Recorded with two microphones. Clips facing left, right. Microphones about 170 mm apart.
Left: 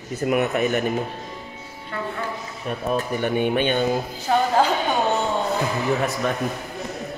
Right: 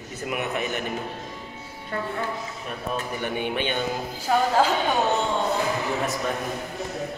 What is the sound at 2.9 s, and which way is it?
Speech, 45° left (ahead or behind).